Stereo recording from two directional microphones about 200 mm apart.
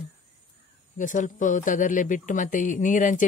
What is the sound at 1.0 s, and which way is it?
Speech, 40° left (ahead or behind).